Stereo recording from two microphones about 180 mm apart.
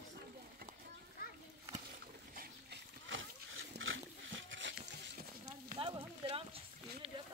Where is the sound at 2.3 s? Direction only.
55° right (ahead or behind).